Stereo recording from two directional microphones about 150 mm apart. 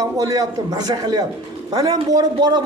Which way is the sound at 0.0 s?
25° right (ahead or behind).